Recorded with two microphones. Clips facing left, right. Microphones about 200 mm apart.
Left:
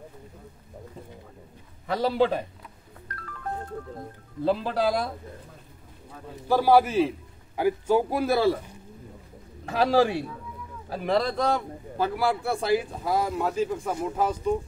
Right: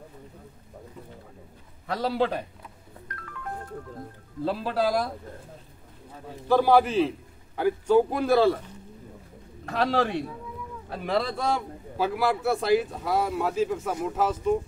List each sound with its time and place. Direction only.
1.9 s a man's voice: centre (ahead or behind)
3.1 s music: 35° left (ahead or behind)
4.5 s a man's voice: centre (ahead or behind)
6.4 s a man's voice: 10° left (ahead or behind)